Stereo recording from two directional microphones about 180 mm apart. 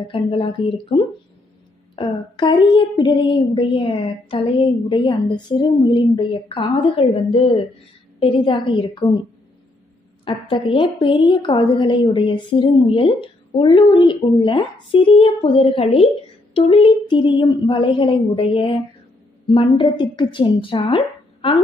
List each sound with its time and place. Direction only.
0.1 s a woman's voice: 30° left (ahead or behind)
10.2 s a woman's voice: 30° left (ahead or behind)